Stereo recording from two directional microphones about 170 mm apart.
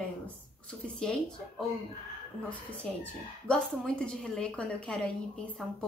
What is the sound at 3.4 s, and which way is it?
A woman's voice, 5° left (ahead or behind).